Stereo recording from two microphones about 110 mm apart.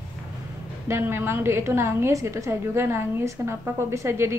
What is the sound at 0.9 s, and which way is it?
A woman's voice, 20° right (ahead or behind).